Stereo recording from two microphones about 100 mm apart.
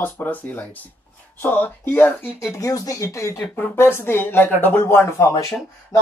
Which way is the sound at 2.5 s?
30° left (ahead or behind).